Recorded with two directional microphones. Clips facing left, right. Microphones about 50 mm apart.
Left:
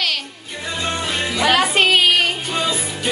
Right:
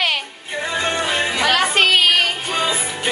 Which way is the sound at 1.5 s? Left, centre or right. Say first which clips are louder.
Left 1 dB; centre.